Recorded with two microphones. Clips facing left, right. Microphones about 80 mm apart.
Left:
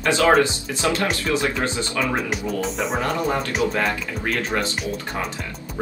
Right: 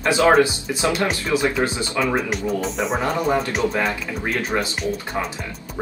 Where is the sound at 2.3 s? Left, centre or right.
Centre.